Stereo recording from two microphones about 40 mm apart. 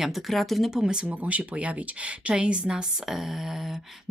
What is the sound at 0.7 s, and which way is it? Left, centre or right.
Speech, centre.